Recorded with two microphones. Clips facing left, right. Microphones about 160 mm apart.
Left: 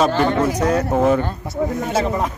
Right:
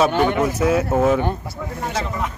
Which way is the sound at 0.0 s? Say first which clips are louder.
Left 1 dB; 5° right (ahead or behind).